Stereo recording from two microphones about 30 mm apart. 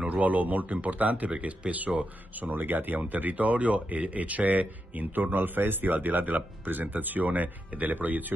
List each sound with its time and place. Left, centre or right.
0.1 s speech: right
1.9 s speech: centre
2.4 s speech: right
3.1 s speech: right